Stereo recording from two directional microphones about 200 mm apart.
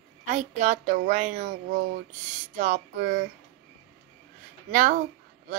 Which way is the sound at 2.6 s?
40° right (ahead or behind).